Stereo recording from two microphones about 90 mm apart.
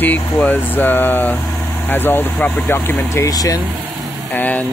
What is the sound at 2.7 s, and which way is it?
Speech, 35° left (ahead or behind).